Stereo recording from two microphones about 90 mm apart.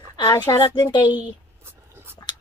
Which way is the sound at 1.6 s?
25° right (ahead or behind).